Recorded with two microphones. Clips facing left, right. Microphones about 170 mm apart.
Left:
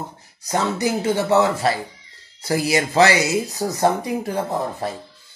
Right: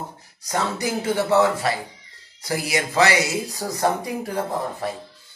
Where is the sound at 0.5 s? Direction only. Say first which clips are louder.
Left 3 dB; 25° left (ahead or behind).